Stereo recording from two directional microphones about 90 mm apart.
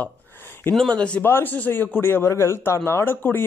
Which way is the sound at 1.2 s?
20° left (ahead or behind).